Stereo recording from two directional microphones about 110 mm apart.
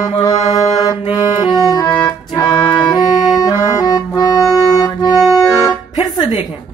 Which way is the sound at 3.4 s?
35° left (ahead or behind).